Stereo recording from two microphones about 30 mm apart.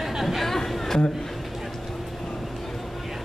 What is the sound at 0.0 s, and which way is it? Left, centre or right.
Chatter, centre.